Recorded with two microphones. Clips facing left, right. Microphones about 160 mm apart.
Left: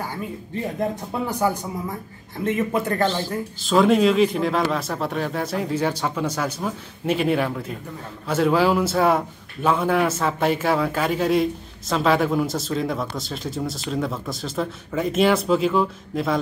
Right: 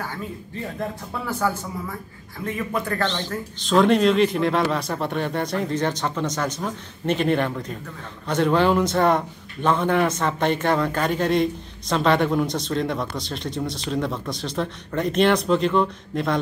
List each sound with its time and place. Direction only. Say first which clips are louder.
0.7 s a man's voice: left 5 dB; 15° left (ahead or behind)
3.1 s speech: left 3 dB; 5° left (ahead or behind)